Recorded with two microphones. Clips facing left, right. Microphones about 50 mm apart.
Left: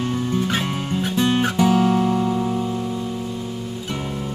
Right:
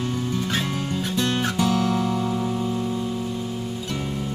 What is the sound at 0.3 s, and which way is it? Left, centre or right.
Music, left.